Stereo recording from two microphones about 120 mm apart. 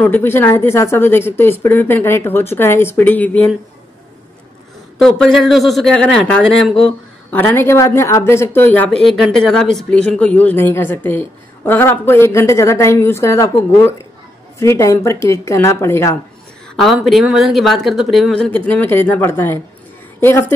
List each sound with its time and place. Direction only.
0.0 s speech: 15° left (ahead or behind)
5.0 s speech: centre (ahead or behind)
7.2 s speech: 15° left (ahead or behind)
9.0 s speech: centre (ahead or behind); by 16.2 s 20° left (ahead or behind)
16.7 s a woman's voice: centre (ahead or behind); by 20.5 s 15° left (ahead or behind)